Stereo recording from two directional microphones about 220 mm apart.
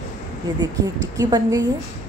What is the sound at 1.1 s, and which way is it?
Speech, 15° right (ahead or behind).